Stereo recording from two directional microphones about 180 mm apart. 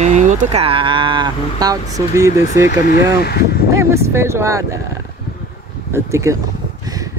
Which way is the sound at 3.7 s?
15° right (ahead or behind).